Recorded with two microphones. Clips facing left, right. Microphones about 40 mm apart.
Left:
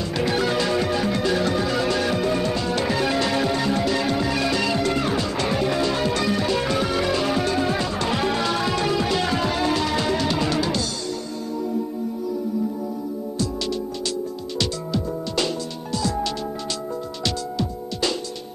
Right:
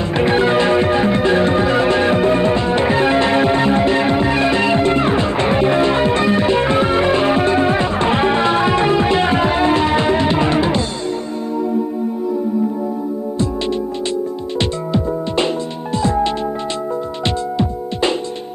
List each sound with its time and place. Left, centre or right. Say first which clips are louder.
0.1 s music: right 8 dB; right
14.6 s music: right 6 dB; right